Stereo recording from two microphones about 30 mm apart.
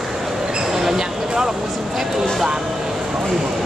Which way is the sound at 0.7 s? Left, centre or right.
Centre.